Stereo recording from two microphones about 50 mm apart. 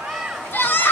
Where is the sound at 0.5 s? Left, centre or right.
Left.